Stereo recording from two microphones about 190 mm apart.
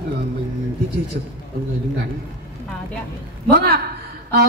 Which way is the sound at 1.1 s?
55° right (ahead or behind).